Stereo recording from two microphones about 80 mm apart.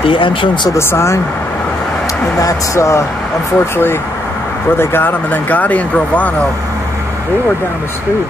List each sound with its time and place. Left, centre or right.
0.1 s speech: left
0.7 s speech: left
2.4 s speech: left; by 6.3 s centre